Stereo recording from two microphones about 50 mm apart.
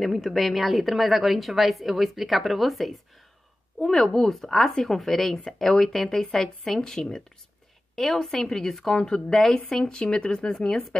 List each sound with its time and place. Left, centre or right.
0.0 s a woman's voice: centre